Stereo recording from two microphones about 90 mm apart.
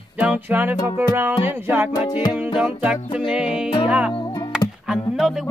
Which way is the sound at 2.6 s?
10° right (ahead or behind).